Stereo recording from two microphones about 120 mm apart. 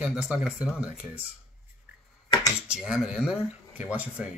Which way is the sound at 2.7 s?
5° right (ahead or behind).